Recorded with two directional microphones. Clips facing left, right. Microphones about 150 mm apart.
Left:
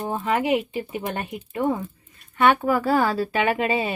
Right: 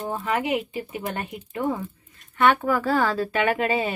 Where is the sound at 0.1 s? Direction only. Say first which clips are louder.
Left 3 dB; 25° left (ahead or behind).